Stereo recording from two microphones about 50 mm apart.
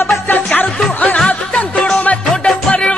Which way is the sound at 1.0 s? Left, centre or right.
Left.